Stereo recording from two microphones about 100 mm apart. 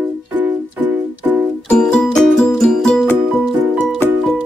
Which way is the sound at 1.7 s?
10° left (ahead or behind).